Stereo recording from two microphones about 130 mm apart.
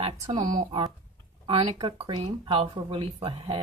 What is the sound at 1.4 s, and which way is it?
Speech, 40° right (ahead or behind).